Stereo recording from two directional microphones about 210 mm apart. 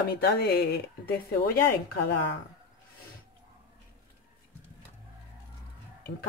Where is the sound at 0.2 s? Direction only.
50° left (ahead or behind).